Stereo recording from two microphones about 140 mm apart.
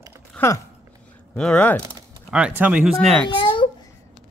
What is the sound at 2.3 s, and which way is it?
Speech, 10° right (ahead or behind).